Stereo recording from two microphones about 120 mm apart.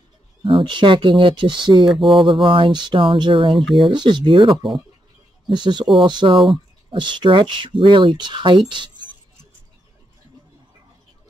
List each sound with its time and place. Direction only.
0.4 s speech: 45° right (ahead or behind)
1.9 s speech: centre (ahead or behind)
2.5 s speech: 45° right (ahead or behind)
3.5 s speech: centre (ahead or behind)
3.9 s speech: 40° right (ahead or behind)